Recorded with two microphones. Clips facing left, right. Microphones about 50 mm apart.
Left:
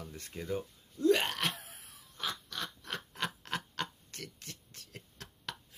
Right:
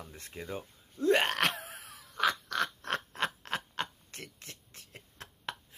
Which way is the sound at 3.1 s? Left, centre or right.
Right.